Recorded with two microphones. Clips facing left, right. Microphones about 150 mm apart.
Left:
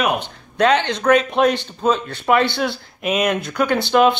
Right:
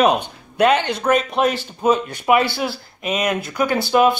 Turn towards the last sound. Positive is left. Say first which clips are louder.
# left 1 dB
turn(degrees=-10)  # may be behind; listen again after turning